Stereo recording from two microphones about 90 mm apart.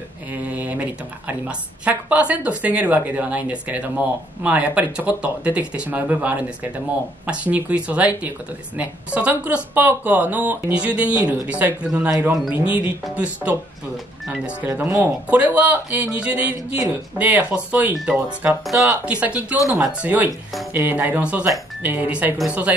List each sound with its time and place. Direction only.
0.3 s a woman's voice: 20° right (ahead or behind)
14.6 s a woman's voice: 20° right (ahead or behind)
19.5 s speech: 40° left (ahead or behind)
19.8 s a woman's voice: 15° right (ahead or behind)